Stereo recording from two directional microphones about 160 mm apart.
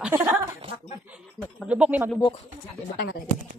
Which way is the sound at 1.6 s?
5° right (ahead or behind).